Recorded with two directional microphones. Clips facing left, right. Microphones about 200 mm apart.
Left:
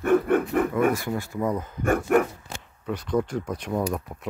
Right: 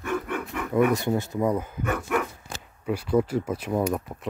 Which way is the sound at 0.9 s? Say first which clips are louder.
Right 3 dB; 25° right (ahead or behind).